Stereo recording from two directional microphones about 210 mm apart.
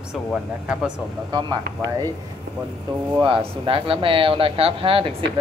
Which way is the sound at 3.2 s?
25° right (ahead or behind).